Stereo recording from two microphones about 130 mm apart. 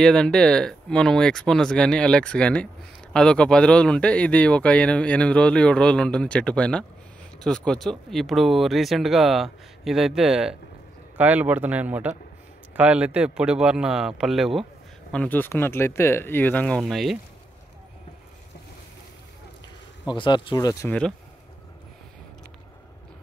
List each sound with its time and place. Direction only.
0.0 s speech: 5° left (ahead or behind)
20.1 s speech: 35° left (ahead or behind)
20.8 s speech: 10° left (ahead or behind)